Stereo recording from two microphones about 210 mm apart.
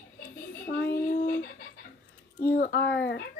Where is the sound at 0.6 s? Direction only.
50° left (ahead or behind).